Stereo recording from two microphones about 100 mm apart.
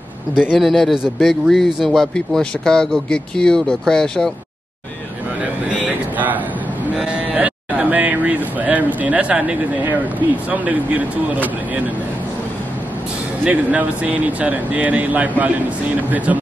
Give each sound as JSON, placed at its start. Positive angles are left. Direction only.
{"t": 0.5, "sound": "a man's voice", "side_deg": 0}
{"t": 5.7, "sound": "a sound", "side_deg": -15}
{"t": 7.0, "sound": "speech", "side_deg": -15}
{"t": 13.4, "sound": "speech", "side_deg": -15}